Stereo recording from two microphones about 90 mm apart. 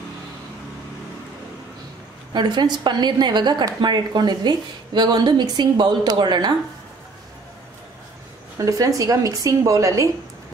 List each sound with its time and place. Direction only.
2.3 s a woman's voice: 55° right (ahead or behind)
8.5 s speech: 40° right (ahead or behind)